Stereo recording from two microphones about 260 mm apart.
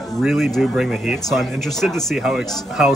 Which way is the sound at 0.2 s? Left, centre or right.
Centre.